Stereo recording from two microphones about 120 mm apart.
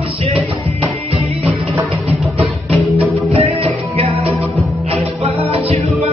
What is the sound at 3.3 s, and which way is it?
Music, 55° right (ahead or behind).